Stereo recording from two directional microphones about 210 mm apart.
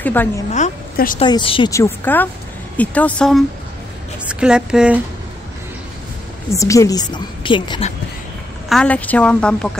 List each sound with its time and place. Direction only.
0.0 s a woman's voice: 10° left (ahead or behind)
0.5 s a woman's voice: 40° left (ahead or behind)
1.2 s a woman's voice: 25° left (ahead or behind)
1.7 s a woman's voice: 10° left (ahead or behind); by 5.0 s 5° right (ahead or behind)
6.5 s a woman's voice: 15° left (ahead or behind)
8.6 s a woman's voice: 5° left (ahead or behind)